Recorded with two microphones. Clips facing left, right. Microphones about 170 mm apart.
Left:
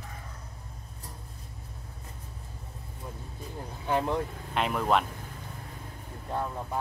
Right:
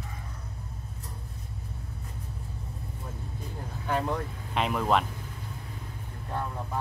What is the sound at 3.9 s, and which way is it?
Speech, 20° left (ahead or behind).